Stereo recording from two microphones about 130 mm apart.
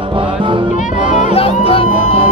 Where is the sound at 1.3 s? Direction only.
45° left (ahead or behind).